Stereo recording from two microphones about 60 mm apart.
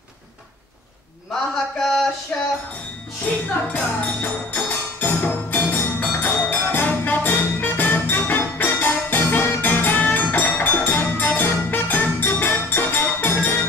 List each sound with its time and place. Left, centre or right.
1.3 s a man's voice: centre
2.3 s music: centre
3.7 s music: left